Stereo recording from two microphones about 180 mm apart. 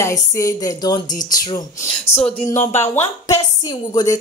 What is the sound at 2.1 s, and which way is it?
Speech, 35° left (ahead or behind).